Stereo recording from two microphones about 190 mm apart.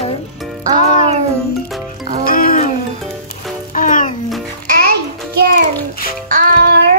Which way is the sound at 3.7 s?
45° left (ahead or behind).